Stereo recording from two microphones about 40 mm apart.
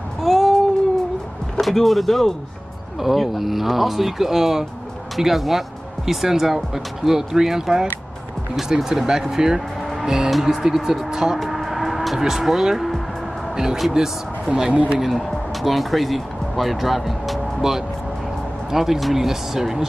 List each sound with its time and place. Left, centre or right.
0.2 s a sound: centre
1.6 s speech: centre
9.8 s music: centre
10.4 s speech: centre
11.3 s a sound: centre
12.2 s speech: centre
14.7 s speech: right
15.0 s speech: centre